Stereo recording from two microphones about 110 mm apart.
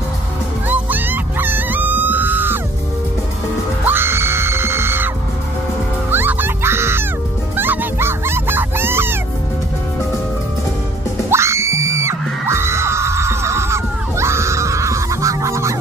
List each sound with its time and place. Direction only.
0.7 s music: 15° right (ahead or behind)
3.8 s music: 20° right (ahead or behind)
11.2 s music: 25° right (ahead or behind)